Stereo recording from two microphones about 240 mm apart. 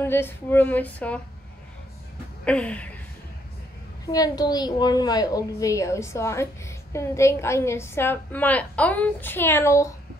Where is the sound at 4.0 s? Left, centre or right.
Centre.